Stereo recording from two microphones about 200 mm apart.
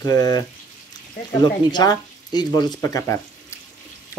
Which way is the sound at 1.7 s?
20° left (ahead or behind).